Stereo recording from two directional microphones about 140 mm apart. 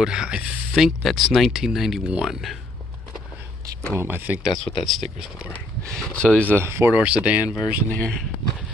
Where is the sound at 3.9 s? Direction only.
15° right (ahead or behind).